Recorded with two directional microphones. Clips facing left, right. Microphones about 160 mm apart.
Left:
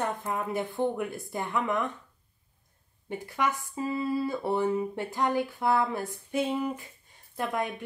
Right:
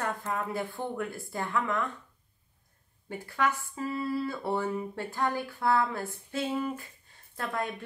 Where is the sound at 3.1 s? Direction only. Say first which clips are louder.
Even; 20° left (ahead or behind).